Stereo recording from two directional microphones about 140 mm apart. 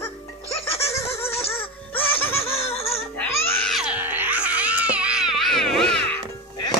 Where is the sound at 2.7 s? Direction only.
45° left (ahead or behind).